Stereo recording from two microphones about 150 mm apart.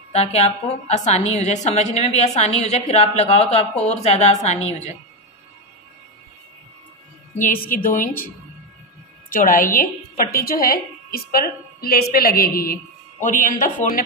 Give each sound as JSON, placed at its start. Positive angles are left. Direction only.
{"t": 0.1, "sound": "a woman's voice", "side_deg": 45}
{"t": 7.3, "sound": "a woman's voice", "side_deg": 70}
{"t": 9.3, "sound": "a woman's voice", "side_deg": 65}
{"t": 10.3, "sound": "a woman's voice", "side_deg": 80}
{"t": 13.2, "sound": "a woman's voice", "side_deg": 60}